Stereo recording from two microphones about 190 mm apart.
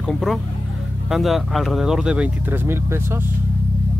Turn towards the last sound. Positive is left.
turn(degrees=-10)  # may be behind; listen again after turning